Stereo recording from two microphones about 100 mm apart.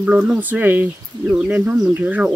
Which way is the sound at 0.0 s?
15° right (ahead or behind).